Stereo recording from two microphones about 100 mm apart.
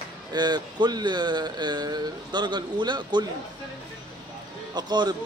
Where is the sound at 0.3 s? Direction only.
45° right (ahead or behind).